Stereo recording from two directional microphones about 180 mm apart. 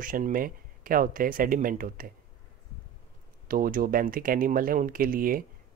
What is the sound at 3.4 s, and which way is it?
Speech, 50° right (ahead or behind).